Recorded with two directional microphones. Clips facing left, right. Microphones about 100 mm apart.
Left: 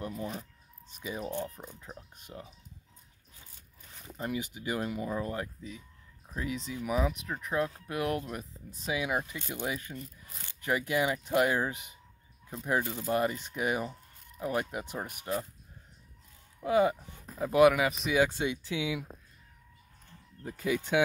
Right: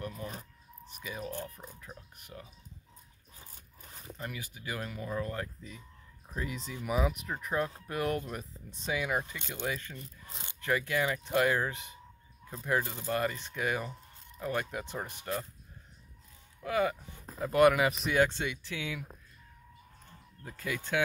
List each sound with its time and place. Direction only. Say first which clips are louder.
0.0 s speech: left 3 dB; 30° left (ahead or behind)
4.2 s speech: left 8 dB; 20° left (ahead or behind)
5.6 s speech: left 4 dB; centre (ahead or behind)
9.9 s rub: left 2 dB; 25° right (ahead or behind)
10.6 s speech: left 1 dB; 15° left (ahead or behind)
16.6 s speech: left 4 dB; 20° left (ahead or behind)
17.4 s speech: left 1 dB; 5° left (ahead or behind)
18.2 s speech: left 1 dB; 15° left (ahead or behind)
20.4 s speech: left 6 dB; 15° left (ahead or behind)